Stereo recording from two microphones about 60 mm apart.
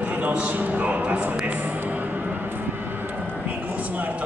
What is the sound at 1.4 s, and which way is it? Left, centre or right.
Vehicle, right.